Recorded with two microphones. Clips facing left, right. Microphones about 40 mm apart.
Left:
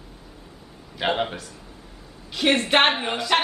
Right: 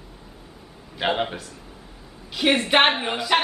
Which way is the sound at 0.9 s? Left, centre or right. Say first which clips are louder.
Even; centre.